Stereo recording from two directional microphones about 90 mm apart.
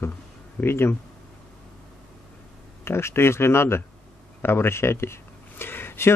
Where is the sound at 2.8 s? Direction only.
30° left (ahead or behind).